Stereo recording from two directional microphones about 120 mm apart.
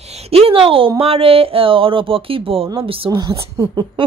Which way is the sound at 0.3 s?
55° right (ahead or behind).